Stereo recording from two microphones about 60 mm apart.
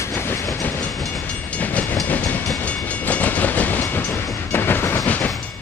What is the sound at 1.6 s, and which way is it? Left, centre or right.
Train, left.